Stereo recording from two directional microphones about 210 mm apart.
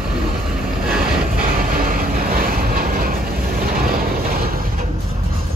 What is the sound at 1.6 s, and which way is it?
Train, 40° right (ahead or behind).